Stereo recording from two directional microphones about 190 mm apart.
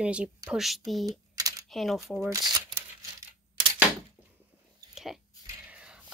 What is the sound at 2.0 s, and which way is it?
Speech, 15° right (ahead or behind).